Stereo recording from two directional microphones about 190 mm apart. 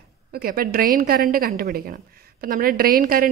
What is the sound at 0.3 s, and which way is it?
A woman's voice, 50° right (ahead or behind).